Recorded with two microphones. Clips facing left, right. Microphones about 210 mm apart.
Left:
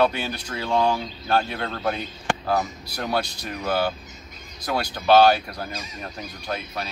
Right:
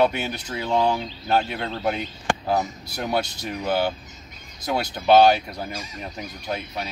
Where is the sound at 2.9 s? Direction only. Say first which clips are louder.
Right 1 dB; 20° right (ahead or behind).